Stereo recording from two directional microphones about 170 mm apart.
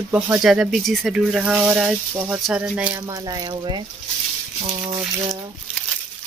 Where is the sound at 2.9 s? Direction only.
20° right (ahead or behind).